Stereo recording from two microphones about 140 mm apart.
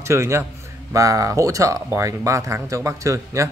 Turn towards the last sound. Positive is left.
turn(degrees=-20)  # may be behind; listen again after turning